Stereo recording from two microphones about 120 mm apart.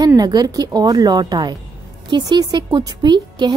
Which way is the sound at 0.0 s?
35° right (ahead or behind).